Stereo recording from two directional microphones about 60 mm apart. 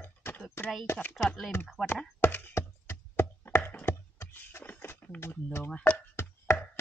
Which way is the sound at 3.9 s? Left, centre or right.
Left.